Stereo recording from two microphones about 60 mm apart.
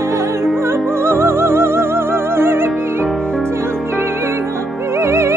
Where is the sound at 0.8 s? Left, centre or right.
Right.